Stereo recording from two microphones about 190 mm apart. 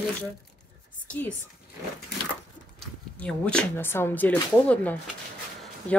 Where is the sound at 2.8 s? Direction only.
5° left (ahead or behind).